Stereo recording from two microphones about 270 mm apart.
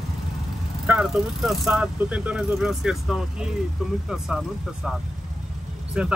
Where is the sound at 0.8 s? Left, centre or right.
Centre.